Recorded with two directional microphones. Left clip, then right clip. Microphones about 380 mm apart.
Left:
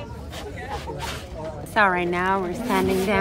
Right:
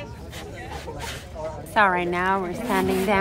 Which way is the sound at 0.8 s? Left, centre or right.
Centre.